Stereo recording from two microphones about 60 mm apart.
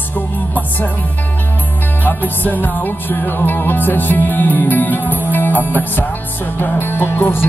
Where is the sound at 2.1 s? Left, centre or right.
Left.